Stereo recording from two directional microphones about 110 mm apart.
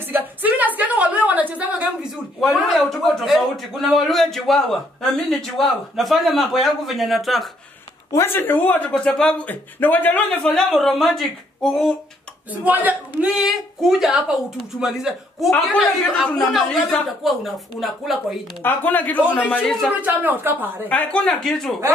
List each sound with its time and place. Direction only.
0.0 s a sound: 15° right (ahead or behind)
2.4 s a man's voice: centre (ahead or behind)
8.1 s speech: 20° left (ahead or behind)
10.4 s a man's voice: 5° left (ahead or behind)
12.6 s speech: 15° right (ahead or behind)
13.3 s a man's voice: 5° right (ahead or behind)
18.6 s a man's voice: 15° left (ahead or behind)
20.0 s speech: 15° right (ahead or behind)
20.9 s speech: 10° left (ahead or behind)